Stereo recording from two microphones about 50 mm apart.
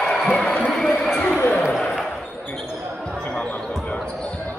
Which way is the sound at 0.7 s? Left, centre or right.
Centre.